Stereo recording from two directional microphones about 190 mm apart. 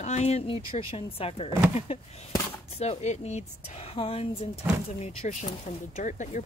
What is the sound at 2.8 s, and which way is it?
Speech, 35° left (ahead or behind).